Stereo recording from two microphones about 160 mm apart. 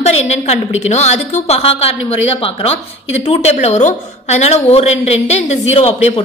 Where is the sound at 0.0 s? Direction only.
40° left (ahead or behind).